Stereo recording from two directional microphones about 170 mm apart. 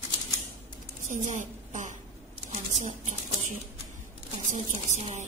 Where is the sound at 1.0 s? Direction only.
45° right (ahead or behind).